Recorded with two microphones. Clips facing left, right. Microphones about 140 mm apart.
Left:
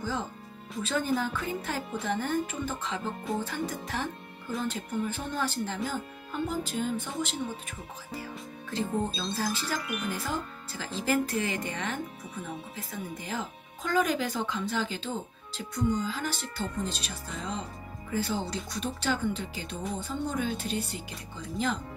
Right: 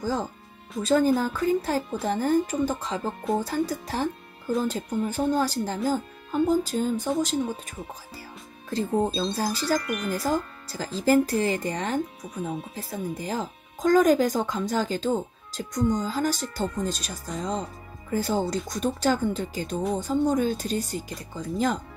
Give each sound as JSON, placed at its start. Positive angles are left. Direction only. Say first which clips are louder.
{"t": 0.0, "sound": "speech", "louder": "right 5 dB", "side_deg": -40}
{"t": 9.8, "sound": "speech", "louder": "right 6 dB", "side_deg": 5}
{"t": 10.0, "sound": "speech", "louder": "right 7 dB", "side_deg": -35}